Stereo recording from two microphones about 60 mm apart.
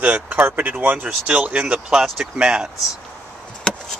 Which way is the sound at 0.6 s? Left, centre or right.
Right.